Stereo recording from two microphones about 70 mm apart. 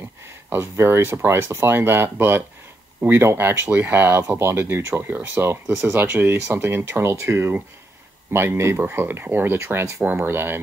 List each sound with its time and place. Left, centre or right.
0.5 s speech: right